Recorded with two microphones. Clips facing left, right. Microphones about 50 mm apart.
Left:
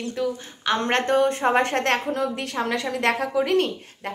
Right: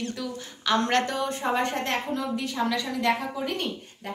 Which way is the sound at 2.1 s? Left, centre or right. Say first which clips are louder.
Left 3 dB; left.